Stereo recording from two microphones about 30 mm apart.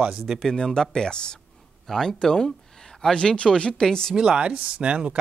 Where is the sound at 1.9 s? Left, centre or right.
Centre; by 3.8 s left.